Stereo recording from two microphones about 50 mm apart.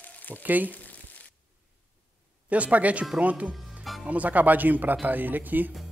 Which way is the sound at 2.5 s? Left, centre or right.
Right.